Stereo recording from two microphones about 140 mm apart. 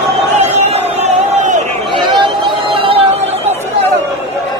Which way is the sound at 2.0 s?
35° right (ahead or behind).